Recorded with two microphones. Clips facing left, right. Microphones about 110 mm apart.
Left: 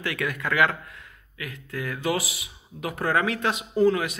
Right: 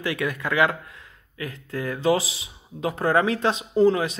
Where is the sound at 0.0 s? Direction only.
20° right (ahead or behind).